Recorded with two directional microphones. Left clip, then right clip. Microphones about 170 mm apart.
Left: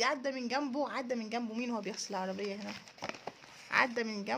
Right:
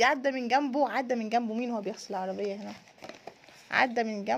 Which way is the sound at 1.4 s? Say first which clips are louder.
Right 5 dB; 15° right (ahead or behind).